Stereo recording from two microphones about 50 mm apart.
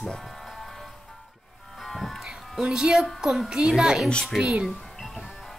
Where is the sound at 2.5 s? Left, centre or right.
Centre.